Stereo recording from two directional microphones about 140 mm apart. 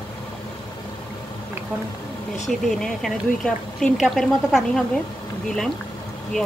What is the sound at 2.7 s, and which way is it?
Speech, centre (ahead or behind).